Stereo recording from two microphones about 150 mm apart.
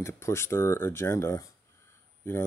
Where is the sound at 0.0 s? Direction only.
20° left (ahead or behind).